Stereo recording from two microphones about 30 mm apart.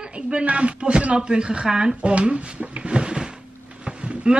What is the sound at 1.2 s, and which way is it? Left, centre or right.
Speech, right.